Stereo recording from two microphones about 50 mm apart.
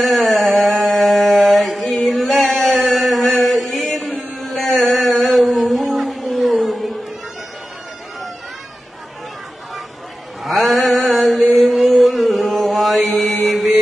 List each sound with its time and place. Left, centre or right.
0.0 s a sound: centre
10.4 s mantra: centre
13.2 s mantra: left